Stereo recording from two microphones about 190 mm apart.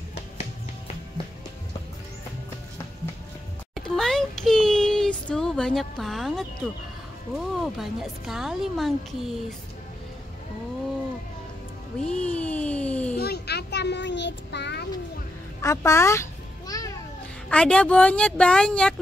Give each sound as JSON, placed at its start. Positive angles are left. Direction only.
{"t": 3.7, "sound": "a sound", "side_deg": 0}
{"t": 7.3, "sound": "speech", "side_deg": 0}
{"t": 12.1, "sound": "a sound", "side_deg": 5}
{"t": 13.2, "sound": "child singing", "side_deg": 60}
{"t": 15.6, "sound": "babbling", "side_deg": 15}
{"t": 17.5, "sound": "speech", "side_deg": 5}